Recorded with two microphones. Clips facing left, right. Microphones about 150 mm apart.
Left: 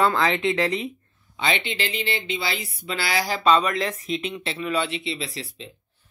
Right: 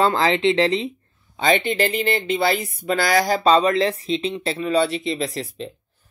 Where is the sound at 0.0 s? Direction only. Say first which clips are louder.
Right 3 dB; 30° right (ahead or behind).